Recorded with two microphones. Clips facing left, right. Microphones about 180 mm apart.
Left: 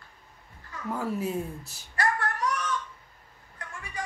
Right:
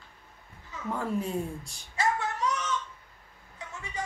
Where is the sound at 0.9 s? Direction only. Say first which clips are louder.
Left 1 dB; 5° left (ahead or behind).